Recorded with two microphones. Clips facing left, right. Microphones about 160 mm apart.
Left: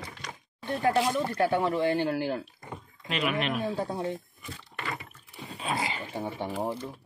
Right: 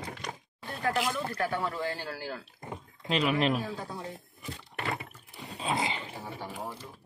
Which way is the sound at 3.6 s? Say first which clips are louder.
Left 7 dB; 30° left (ahead or behind).